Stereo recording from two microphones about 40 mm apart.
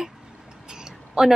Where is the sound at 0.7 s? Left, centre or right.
Centre.